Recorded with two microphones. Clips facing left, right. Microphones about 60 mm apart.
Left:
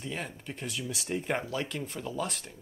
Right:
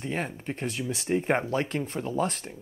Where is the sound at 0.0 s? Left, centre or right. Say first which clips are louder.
Right 6 dB; right.